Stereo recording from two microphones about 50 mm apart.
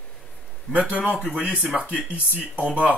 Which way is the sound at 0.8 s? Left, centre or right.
Right.